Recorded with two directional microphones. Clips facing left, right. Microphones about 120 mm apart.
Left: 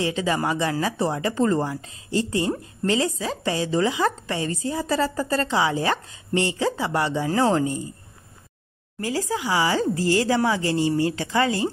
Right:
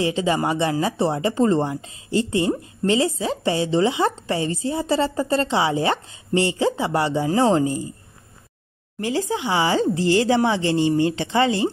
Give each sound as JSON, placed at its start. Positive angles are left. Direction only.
{"t": 0.0, "sound": "a woman's voice", "side_deg": -25}
{"t": 9.0, "sound": "a woman's voice", "side_deg": -25}